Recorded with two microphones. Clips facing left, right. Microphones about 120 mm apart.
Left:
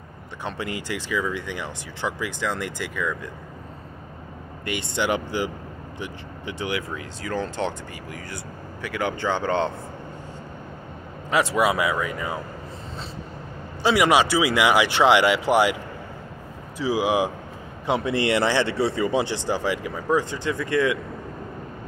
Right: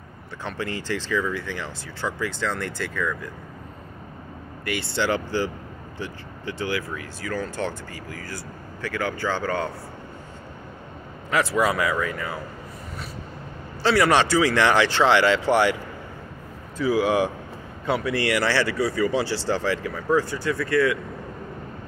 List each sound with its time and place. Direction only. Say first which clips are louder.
0.4 s speech: even; 15° left (ahead or behind)
4.6 s speech: even; 20° left (ahead or behind)
11.2 s speech: left 1 dB; 20° left (ahead or behind)
13.8 s speech: even; 15° left (ahead or behind)